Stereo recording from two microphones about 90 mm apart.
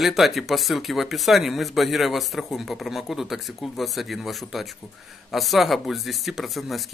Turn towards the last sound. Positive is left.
turn(degrees=0)  # may be behind; listen again after turning